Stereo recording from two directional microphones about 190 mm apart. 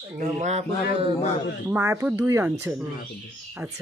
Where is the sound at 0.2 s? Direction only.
40° right (ahead or behind).